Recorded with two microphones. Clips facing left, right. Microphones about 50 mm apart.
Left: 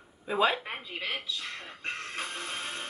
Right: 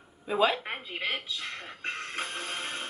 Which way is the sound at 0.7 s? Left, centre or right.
Right.